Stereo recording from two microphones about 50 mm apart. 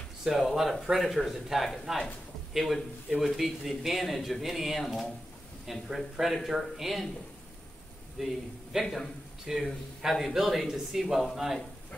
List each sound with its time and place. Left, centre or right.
0.2 s a man's voice: centre
8.2 s a man's voice: centre